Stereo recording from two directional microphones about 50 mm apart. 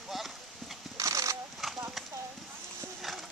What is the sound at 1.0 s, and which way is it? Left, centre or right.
Horse, right.